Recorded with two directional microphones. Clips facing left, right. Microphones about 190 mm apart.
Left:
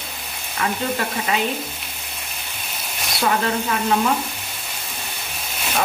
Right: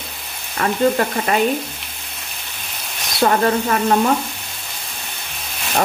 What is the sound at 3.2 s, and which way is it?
Frying, 45° right (ahead or behind).